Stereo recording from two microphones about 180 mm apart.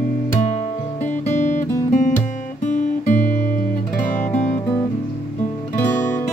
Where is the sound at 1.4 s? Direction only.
45° left (ahead or behind).